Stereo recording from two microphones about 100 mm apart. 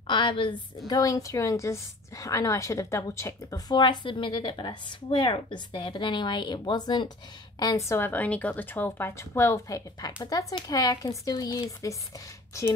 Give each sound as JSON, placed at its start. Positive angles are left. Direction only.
{"t": 0.0, "sound": "a woman's voice", "side_deg": 50}
{"t": 0.8, "sound": "a woman's voice", "side_deg": 35}
{"t": 7.9, "sound": "a woman's voice", "side_deg": 20}